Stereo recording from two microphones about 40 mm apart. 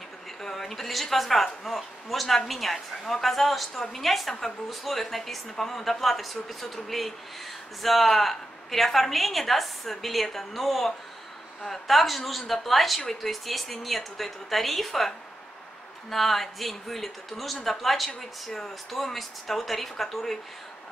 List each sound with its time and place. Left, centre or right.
0.4 s speech: centre